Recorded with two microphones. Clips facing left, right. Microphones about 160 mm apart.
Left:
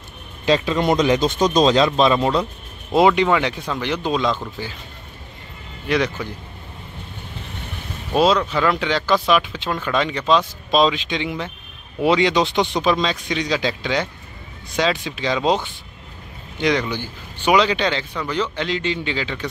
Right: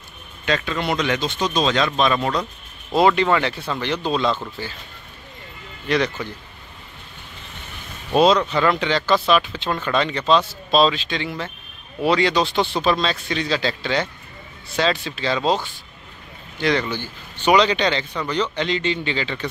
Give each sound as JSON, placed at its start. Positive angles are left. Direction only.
{"t": 0.5, "sound": "speech", "side_deg": 30}
{"t": 2.1, "sound": "speech", "side_deg": 20}
{"t": 5.9, "sound": "speech", "side_deg": 10}
{"t": 8.1, "sound": "speech", "side_deg": 5}